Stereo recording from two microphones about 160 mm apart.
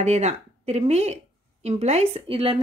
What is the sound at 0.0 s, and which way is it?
Speech, 45° right (ahead or behind).